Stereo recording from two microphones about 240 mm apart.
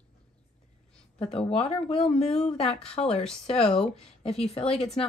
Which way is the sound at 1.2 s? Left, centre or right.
Left.